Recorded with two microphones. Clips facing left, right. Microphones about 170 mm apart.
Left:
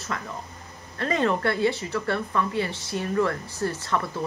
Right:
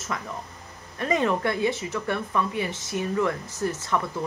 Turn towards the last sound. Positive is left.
turn(degrees=-20)  # may be behind; listen again after turning